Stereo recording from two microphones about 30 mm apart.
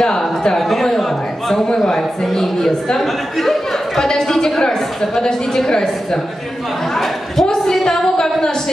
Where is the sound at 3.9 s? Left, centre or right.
Centre.